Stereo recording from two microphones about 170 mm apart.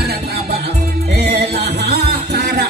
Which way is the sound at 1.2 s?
75° right (ahead or behind).